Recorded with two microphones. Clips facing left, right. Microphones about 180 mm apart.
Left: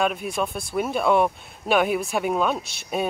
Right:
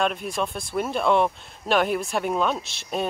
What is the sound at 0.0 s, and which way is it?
Speech, 5° left (ahead or behind).